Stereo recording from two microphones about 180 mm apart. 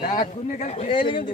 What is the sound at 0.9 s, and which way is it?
Speech, 30° left (ahead or behind).